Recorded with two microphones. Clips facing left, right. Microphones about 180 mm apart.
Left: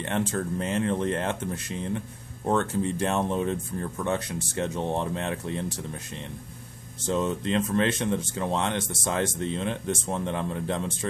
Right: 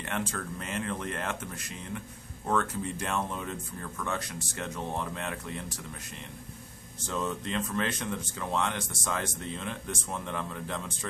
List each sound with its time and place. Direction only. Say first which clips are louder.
0.0 s speech: left 7 dB; 30° left (ahead or behind)
7.1 s speech: left 7 dB; 25° left (ahead or behind)